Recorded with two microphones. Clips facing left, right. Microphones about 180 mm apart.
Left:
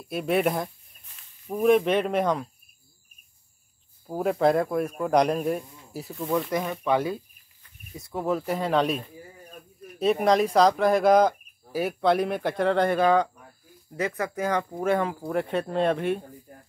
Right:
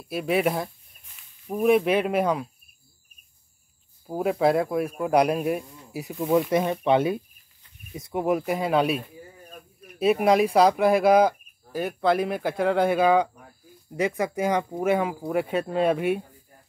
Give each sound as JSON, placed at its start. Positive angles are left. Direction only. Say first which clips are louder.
{"t": 0.1, "sound": "speech", "louder": "even", "side_deg": 0}
{"t": 4.1, "sound": "speech", "louder": "even", "side_deg": -5}